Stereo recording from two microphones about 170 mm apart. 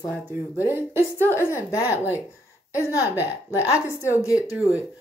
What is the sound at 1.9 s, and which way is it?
A woman's voice, 10° right (ahead or behind).